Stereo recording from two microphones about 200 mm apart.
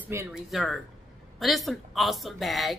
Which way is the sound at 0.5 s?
Centre (ahead or behind).